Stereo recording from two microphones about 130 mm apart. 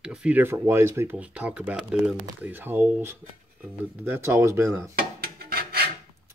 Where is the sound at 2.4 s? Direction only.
15° right (ahead or behind).